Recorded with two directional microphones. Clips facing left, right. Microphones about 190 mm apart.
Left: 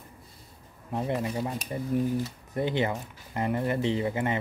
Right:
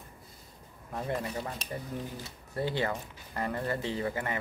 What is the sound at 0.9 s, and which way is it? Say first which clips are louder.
Speech: left 5 dB; 20° left (ahead or behind).